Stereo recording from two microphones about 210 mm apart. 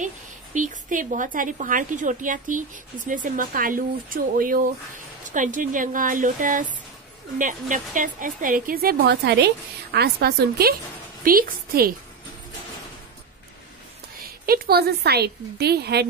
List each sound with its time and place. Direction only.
0.6 s a woman's voice: 40° right (ahead or behind)
14.4 s speech: 45° right (ahead or behind)